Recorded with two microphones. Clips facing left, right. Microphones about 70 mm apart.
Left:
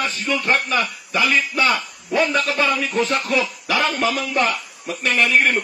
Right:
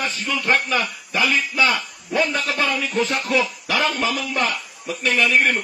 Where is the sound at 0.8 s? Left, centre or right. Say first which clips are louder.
Left 1 dB; left.